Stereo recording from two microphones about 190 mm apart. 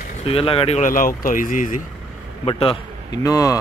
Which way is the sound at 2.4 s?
25° left (ahead or behind).